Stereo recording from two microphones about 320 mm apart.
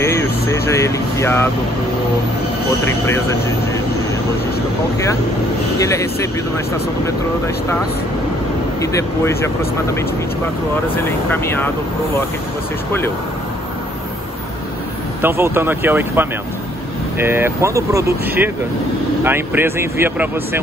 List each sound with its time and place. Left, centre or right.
0.0 s speech: centre
3.1 s speech: centre
5.8 s speech: centre
8.8 s speech: centre
11.1 s speech: centre
15.2 s speech: centre
19.2 s speech: centre